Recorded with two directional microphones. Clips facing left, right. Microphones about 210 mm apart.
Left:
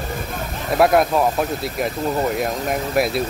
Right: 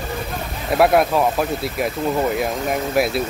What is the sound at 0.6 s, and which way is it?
Speech, centre (ahead or behind).